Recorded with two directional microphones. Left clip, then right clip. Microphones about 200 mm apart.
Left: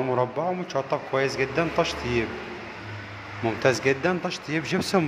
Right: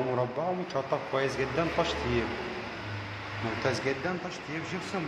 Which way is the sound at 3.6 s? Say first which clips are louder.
Left 9 dB; 20° left (ahead or behind).